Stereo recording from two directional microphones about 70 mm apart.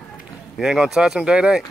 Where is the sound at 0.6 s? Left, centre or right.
Centre.